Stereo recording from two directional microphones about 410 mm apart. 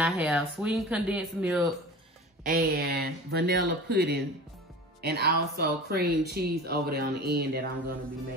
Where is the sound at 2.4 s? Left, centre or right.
Right.